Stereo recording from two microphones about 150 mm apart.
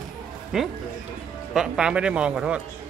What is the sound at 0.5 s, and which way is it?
Speech, 5° right (ahead or behind).